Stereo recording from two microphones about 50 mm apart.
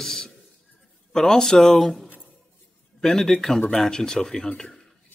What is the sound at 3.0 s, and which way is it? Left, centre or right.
Speech, centre.